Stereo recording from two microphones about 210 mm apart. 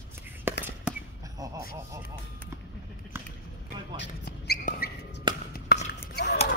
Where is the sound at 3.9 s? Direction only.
50° left (ahead or behind).